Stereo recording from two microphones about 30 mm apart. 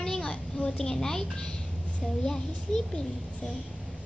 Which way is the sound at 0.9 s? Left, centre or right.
Centre.